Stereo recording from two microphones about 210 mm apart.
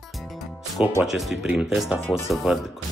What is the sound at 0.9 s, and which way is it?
Speech, 5° right (ahead or behind).